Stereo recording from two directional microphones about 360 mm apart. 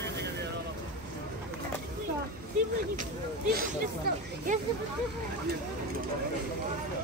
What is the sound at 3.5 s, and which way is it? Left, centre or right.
Speech, right.